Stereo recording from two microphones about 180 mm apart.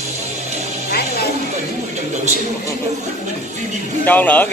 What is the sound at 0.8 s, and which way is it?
Music, 60° left (ahead or behind).